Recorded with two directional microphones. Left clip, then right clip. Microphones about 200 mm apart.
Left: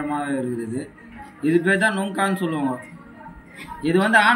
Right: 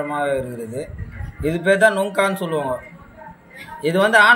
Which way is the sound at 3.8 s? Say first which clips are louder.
Right 3 dB; 60° right (ahead or behind).